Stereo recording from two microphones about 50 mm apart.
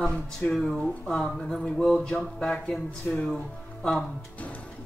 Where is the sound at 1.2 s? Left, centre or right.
Centre.